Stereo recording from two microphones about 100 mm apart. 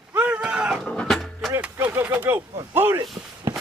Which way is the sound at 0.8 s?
5° left (ahead or behind).